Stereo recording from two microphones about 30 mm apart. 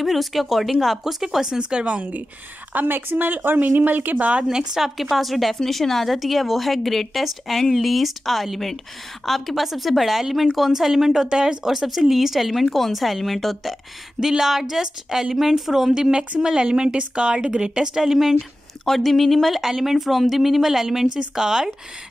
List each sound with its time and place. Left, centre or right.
0.0 s speech: centre
1.4 s speech: right
2.7 s a woman's voice: right
4.8 s speech: centre
5.1 s a woman's voice: centre
6.1 s speech: centre
11.2 s speech: right
12.4 s speech: centre
14.2 s speech: centre
15.9 s a woman's voice: right
18.9 s speech: centre
19.6 s speech: centre
21.4 s a woman's voice: right